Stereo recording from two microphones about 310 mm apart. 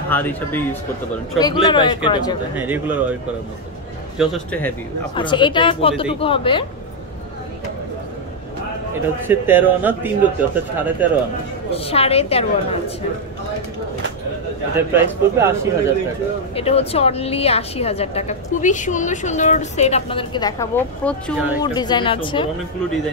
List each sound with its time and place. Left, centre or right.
0.1 s speech: centre
2.5 s speech: centre
4.2 s speech: centre
9.3 s a man's voice: centre
11.7 s a woman's voice: centre
14.9 s a man's voice: centre
16.5 s a woman's voice: centre